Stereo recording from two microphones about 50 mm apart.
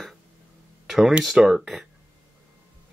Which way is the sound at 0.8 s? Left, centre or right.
Centre.